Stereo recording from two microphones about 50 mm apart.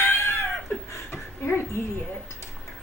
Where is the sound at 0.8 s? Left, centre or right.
Left.